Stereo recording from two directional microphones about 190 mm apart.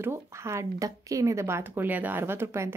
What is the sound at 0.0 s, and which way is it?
Speech, 15° right (ahead or behind).